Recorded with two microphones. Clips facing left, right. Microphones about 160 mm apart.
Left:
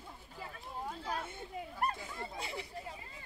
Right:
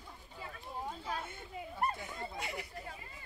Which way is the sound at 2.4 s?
30° left (ahead or behind).